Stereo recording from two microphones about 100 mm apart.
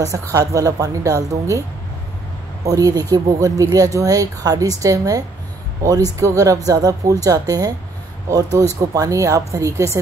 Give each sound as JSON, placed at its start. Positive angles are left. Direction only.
{"t": 0.0, "sound": "a woman's voice", "side_deg": -35}
{"t": 2.6, "sound": "a woman's voice", "side_deg": -35}